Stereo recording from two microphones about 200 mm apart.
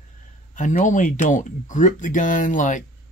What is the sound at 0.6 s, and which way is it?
Speech, 40° left (ahead or behind).